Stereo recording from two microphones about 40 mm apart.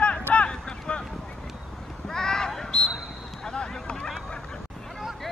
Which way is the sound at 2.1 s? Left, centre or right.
Centre.